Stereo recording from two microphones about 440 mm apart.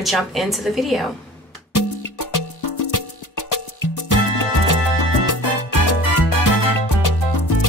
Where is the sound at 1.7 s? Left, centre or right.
Left.